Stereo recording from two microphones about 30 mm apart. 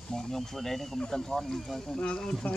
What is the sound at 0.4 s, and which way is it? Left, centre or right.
Speech, centre.